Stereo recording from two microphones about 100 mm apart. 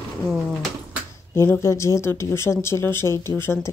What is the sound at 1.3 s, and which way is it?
Speech, 25° left (ahead or behind).